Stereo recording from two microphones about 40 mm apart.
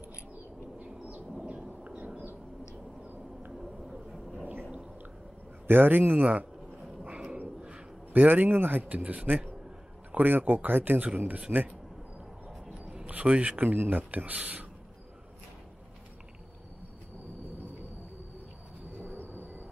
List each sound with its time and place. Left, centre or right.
0.7 s a sound: right
1.4 s a sound: right
5.7 s a man's voice: right
7.3 s a sound: right
8.1 s a man's voice: right
8.8 s speech: right
10.1 s speech: right
11.5 s speech: right
12.6 s a sound: right
13.6 s speech: right
14.1 s speech: right
19.1 s vehicle: left